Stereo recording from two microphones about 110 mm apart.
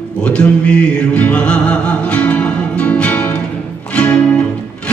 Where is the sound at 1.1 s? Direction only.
10° left (ahead or behind).